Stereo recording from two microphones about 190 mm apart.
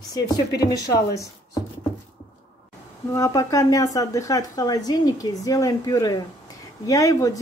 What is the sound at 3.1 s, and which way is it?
Speech, 15° left (ahead or behind).